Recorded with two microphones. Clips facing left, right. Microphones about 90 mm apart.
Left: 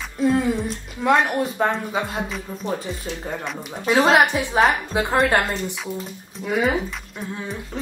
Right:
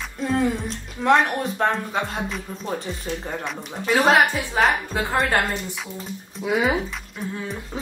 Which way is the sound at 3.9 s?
25° left (ahead or behind).